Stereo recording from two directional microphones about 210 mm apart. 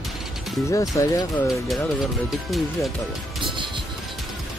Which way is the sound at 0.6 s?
15° left (ahead or behind).